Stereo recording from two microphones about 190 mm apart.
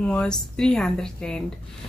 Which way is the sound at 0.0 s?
5° left (ahead or behind).